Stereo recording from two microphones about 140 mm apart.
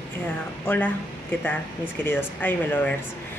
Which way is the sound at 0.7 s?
10° left (ahead or behind).